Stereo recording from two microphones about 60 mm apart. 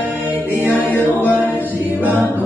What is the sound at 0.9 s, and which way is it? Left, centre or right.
Music, left.